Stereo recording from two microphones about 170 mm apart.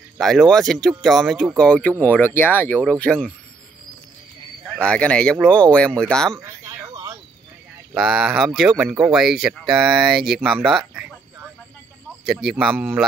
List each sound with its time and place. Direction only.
0.2 s speech: centre (ahead or behind)
4.7 s speech: 5° left (ahead or behind)
6.4 s a sound: 15° right (ahead or behind)
7.9 s speech: 5° right (ahead or behind)
12.3 s speech: centre (ahead or behind)